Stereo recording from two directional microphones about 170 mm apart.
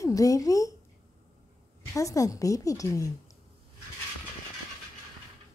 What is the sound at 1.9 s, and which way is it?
A woman's voice, 20° left (ahead or behind).